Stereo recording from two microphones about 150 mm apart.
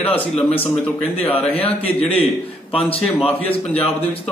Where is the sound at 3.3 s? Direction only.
40° left (ahead or behind).